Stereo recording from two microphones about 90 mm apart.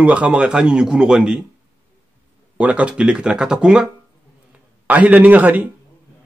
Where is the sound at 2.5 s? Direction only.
15° right (ahead or behind).